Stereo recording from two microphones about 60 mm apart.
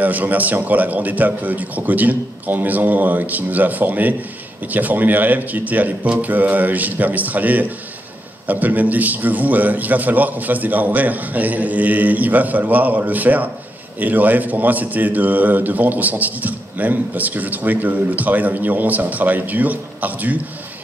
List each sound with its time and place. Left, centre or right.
0.0 s a man's voice: right